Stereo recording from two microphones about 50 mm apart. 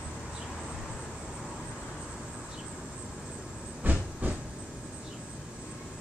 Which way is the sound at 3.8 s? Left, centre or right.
Right.